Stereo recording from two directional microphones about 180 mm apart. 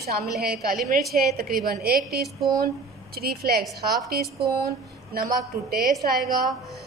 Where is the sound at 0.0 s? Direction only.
60° right (ahead or behind).